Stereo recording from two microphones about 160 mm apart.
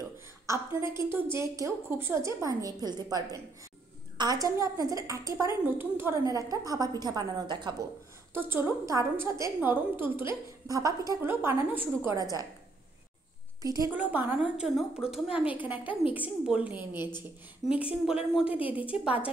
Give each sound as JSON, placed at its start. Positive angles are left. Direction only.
{"t": 0.5, "sound": "a woman's voice", "side_deg": -15}
{"t": 8.3, "sound": "a woman's voice", "side_deg": -15}
{"t": 13.6, "sound": "a woman's voice", "side_deg": -20}
{"t": 13.9, "sound": "a woman's voice", "side_deg": -10}
{"t": 18.3, "sound": "a woman's voice", "side_deg": -5}